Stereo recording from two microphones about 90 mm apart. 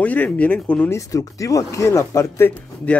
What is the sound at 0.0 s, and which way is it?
Speech, 15° left (ahead or behind).